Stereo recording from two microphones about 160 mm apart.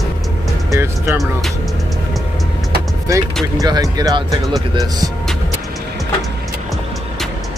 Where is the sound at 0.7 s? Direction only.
15° right (ahead or behind).